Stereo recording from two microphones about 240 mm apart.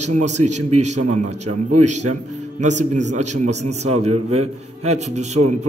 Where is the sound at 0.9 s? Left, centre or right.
Right.